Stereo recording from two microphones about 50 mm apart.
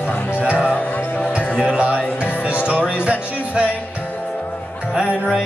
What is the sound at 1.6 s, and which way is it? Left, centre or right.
Music, right.